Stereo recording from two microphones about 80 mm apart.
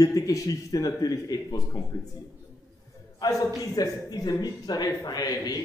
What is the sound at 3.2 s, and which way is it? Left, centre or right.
Speech, left.